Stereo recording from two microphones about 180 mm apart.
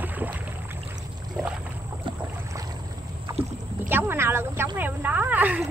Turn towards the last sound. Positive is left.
turn(degrees=-10)  # may be behind; listen again after turning